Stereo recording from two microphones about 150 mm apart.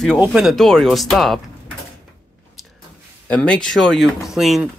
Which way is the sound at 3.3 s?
10° left (ahead or behind).